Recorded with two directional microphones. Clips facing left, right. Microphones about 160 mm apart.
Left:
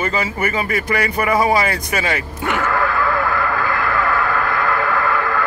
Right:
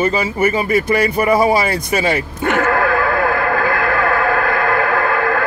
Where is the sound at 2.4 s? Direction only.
55° right (ahead or behind).